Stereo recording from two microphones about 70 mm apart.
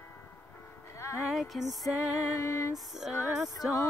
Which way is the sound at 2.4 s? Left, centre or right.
Left.